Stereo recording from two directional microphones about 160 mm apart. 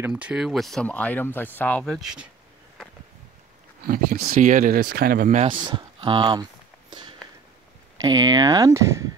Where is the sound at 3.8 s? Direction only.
70° right (ahead or behind).